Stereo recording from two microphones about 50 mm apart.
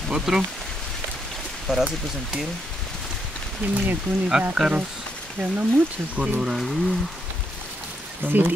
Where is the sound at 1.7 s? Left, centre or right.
Centre.